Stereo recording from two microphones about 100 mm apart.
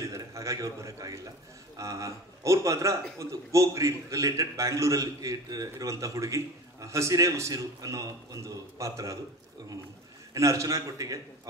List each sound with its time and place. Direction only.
0.0 s a man's voice: 30° right (ahead or behind)
10.3 s a man's voice: 30° right (ahead or behind)